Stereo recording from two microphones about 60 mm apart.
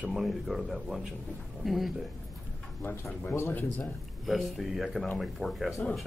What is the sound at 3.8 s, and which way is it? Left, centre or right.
Speech, centre.